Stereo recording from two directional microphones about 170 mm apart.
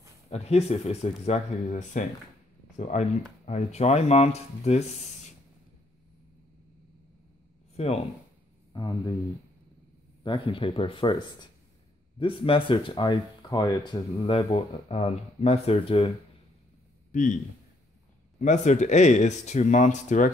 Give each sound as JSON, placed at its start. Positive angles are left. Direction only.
{"t": 0.3, "sound": "speech", "side_deg": 40}
{"t": 7.7, "sound": "speech", "side_deg": 40}
{"t": 8.7, "sound": "speech", "side_deg": 25}
{"t": 10.2, "sound": "speech", "side_deg": 30}
{"t": 17.1, "sound": "speech", "side_deg": 50}
{"t": 18.4, "sound": "speech", "side_deg": 45}